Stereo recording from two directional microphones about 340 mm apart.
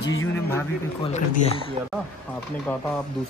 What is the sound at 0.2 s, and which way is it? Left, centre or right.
Speech, centre.